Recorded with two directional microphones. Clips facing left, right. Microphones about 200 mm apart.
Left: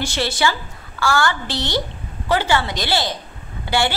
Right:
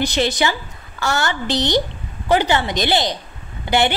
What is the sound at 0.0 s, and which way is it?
A woman's voice, 20° right (ahead or behind).